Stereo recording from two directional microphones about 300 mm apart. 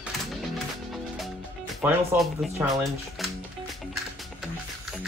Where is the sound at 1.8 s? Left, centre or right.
Centre.